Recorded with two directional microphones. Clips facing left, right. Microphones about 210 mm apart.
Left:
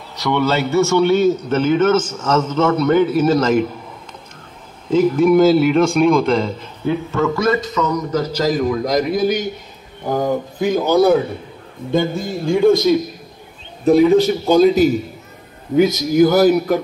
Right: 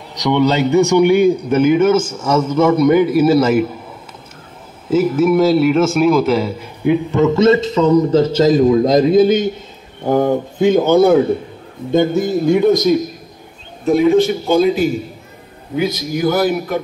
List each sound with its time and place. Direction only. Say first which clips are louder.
0.1 s a man's voice: right 3 dB; 15° right (ahead or behind)
4.8 s a man's voice: even; 5° right (ahead or behind); by 12.5 s 20° right (ahead or behind)
13.8 s a man's voice: even; 35° left (ahead or behind)